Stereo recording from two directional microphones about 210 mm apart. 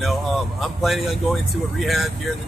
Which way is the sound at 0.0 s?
Centre (ahead or behind).